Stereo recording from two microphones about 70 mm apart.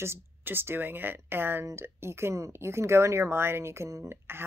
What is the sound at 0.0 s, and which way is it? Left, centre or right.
Speech, right.